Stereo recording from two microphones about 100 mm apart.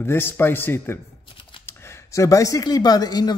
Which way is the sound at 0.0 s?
20° left (ahead or behind).